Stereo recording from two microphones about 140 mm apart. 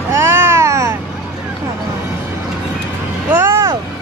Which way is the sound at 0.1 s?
20° right (ahead or behind).